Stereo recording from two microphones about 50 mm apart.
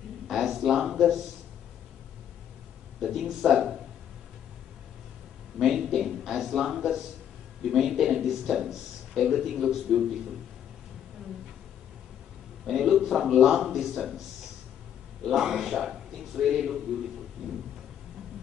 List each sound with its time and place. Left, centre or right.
0.3 s a sound: centre
3.0 s a man's voice: centre
5.6 s a sound: centre
7.6 s a man's voice: centre
12.6 s speech: centre
15.3 s a man's voice: centre